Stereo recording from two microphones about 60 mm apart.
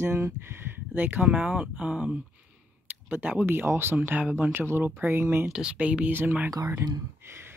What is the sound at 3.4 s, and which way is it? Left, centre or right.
Speech, right.